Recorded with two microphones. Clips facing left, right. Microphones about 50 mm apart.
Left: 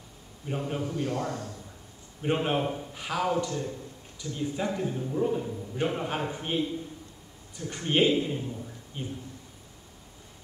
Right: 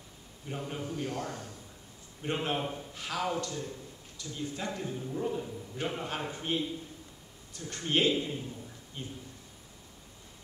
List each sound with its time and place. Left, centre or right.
0.5 s a man's voice: left
0.8 s a man's voice: left
2.2 s a man's voice: centre